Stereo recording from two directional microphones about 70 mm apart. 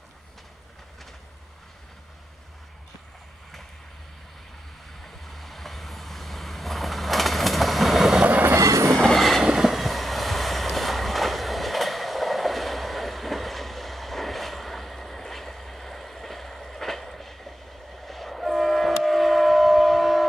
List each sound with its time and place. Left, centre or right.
5.0 s vehicle: centre
8.2 s train: right
8.5 s train: right
8.9 s train: centre
9.4 s vehicle: centre